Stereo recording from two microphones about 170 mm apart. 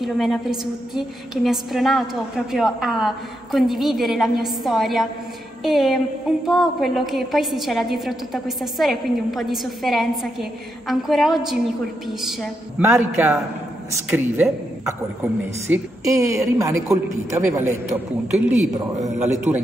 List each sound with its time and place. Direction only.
0.0 s a woman's voice: centre (ahead or behind)
15.7 s a woman's voice: 20° right (ahead or behind)
18.9 s a man's voice: 45° right (ahead or behind)